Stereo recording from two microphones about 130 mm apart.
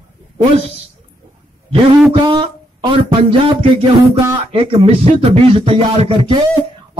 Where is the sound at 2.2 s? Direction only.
35° right (ahead or behind).